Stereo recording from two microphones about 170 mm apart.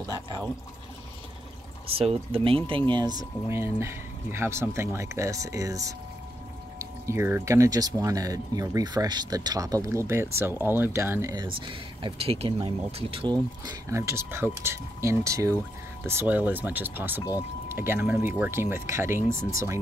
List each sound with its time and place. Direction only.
2.0 s speech: 35° right (ahead or behind); by 11.4 s 15° right (ahead or behind)
11.4 s speech: 30° right (ahead or behind)
13.3 s speech: 20° right (ahead or behind)